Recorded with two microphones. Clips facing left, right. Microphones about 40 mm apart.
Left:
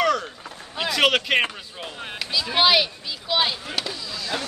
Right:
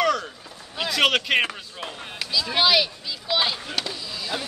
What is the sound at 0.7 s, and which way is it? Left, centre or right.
Speech, centre.